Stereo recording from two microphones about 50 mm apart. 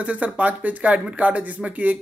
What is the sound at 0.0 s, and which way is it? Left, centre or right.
Speech, right.